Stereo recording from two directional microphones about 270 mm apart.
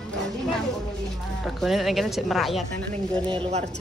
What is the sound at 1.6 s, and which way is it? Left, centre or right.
A woman's voice, centre.